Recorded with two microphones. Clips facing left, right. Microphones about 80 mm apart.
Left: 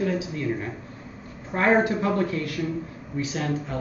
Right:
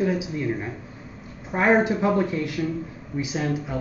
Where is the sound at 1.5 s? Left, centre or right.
Centre.